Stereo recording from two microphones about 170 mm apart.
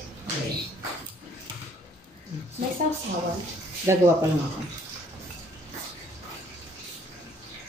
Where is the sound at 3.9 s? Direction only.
15° right (ahead or behind).